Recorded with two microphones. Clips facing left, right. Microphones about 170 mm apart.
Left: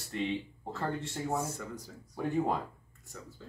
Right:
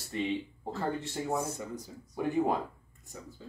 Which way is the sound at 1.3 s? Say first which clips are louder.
Right 1 dB; 15° right (ahead or behind).